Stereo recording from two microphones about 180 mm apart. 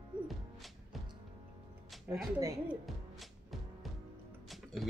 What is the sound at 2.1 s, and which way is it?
Speech, 15° right (ahead or behind).